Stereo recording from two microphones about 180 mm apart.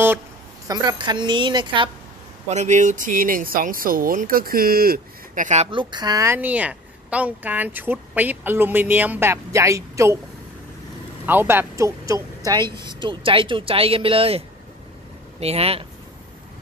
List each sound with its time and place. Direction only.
0.7 s speech: 25° right (ahead or behind)
2.5 s speech: 40° right (ahead or behind)
5.7 s a woman's voice: 25° right (ahead or behind)
11.2 s a woman's voice: 10° right (ahead or behind); by 14.4 s 30° right (ahead or behind)
15.4 s speech: 35° right (ahead or behind)